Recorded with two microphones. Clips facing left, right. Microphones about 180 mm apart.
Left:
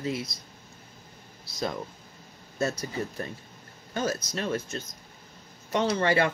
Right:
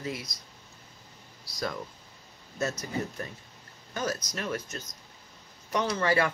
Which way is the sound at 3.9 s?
25° left (ahead or behind).